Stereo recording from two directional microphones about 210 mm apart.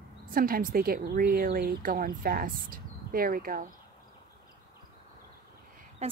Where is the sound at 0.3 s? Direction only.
40° right (ahead or behind).